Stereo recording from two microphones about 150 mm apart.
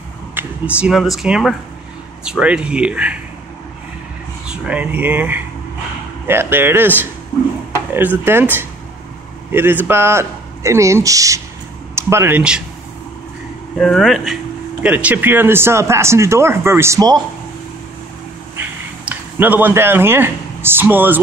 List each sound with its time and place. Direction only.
0.3 s speech: 10° right (ahead or behind)
4.5 s speech: 10° right (ahead or behind)
13.7 s speech: centre (ahead or behind); by 17.2 s 25° right (ahead or behind)
18.6 s a sound: 15° right (ahead or behind)